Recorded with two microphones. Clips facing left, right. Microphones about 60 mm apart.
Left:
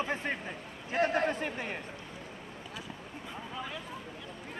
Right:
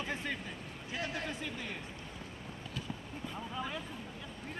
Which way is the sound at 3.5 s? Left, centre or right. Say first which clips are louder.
Even; centre.